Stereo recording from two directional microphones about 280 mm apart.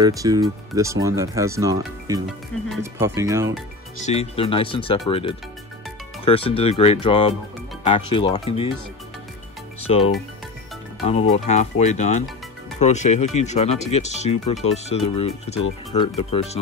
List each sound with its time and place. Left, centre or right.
0.0 s speech: centre
4.0 s speech: left
9.8 s speech: left